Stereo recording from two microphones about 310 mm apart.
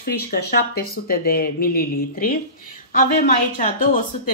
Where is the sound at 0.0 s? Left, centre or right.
Left.